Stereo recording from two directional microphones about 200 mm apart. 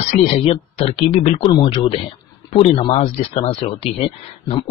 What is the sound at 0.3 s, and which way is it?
A man's voice, 30° left (ahead or behind).